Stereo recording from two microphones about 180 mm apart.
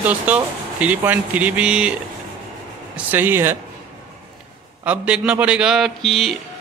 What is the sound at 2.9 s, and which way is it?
Speech, 10° right (ahead or behind).